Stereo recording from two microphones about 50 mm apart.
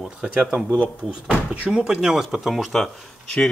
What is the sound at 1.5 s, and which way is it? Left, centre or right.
Speech, centre.